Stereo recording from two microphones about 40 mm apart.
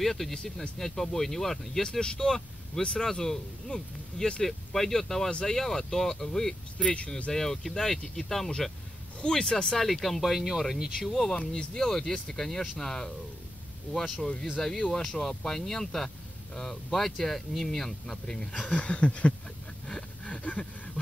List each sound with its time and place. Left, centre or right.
0.0 s speech: centre
1.8 s speech: centre
6.8 s speech: left
7.3 s speech: centre
9.8 s speech: centre
11.3 s speech: centre
14.1 s speech: centre
18.7 s a sound: left